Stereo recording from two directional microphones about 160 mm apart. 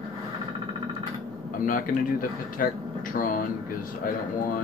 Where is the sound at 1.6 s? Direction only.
60° left (ahead or behind).